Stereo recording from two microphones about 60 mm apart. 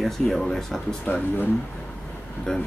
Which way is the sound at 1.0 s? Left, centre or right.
Left.